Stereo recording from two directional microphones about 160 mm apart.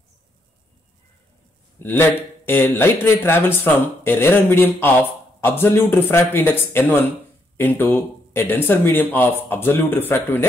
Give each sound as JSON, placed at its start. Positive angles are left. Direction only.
{"t": 1.8, "sound": "a man's voice", "side_deg": 15}